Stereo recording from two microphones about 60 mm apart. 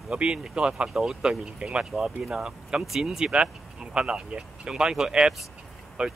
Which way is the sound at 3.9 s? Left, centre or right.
Centre.